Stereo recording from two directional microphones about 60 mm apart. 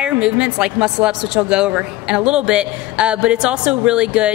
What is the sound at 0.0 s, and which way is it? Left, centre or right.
A woman's voice, centre.